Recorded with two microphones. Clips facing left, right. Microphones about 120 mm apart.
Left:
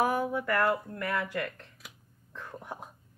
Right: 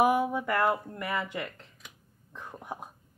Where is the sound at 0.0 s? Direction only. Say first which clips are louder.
Right 3 dB; 15° right (ahead or behind).